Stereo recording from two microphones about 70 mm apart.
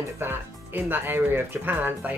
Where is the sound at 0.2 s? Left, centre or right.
Right.